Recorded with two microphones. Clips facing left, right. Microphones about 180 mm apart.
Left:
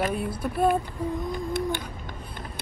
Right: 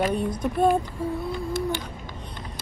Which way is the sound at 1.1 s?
15° left (ahead or behind).